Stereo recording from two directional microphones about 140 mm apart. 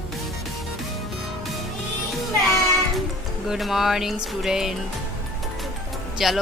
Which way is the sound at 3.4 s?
Centre (ahead or behind).